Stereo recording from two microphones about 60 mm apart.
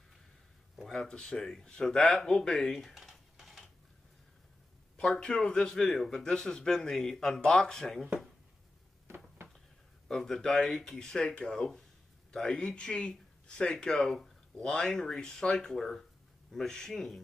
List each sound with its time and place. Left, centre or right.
0.8 s speech: centre
4.9 s speech: centre
9.0 s a sound: right
10.0 s speech: centre